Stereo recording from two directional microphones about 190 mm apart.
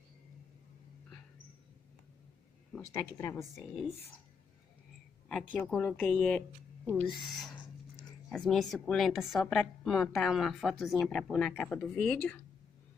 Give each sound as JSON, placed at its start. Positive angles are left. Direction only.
{"t": 2.7, "sound": "speech", "side_deg": 15}
{"t": 3.3, "sound": "speech", "side_deg": 0}
{"t": 5.3, "sound": "speech", "side_deg": 5}